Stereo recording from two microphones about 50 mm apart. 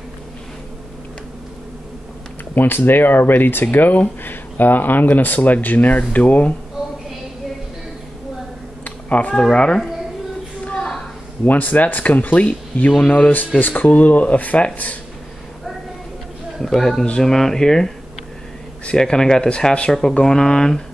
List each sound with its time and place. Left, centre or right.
2.5 s speech: left
8.8 s a sound: left
9.3 s speech: centre
10.6 s a sound: left
11.4 s speech: left
16.6 s speech: centre; by 19.9 s left
19.9 s speech: centre